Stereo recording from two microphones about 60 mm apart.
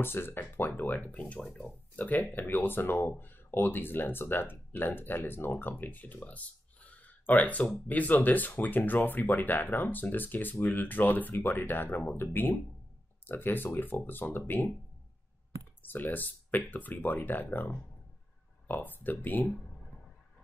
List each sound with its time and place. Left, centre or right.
0.0 s speech: left
15.8 s speech: left